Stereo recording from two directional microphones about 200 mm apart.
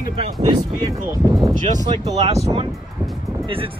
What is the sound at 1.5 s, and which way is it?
Speech, 40° right (ahead or behind).